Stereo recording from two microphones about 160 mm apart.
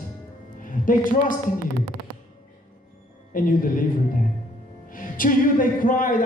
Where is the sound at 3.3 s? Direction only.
60° left (ahead or behind).